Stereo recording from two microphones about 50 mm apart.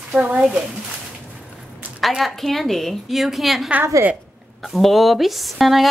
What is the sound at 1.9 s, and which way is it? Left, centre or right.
A woman's voice, centre.